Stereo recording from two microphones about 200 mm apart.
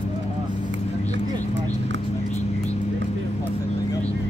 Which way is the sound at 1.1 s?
65° right (ahead or behind).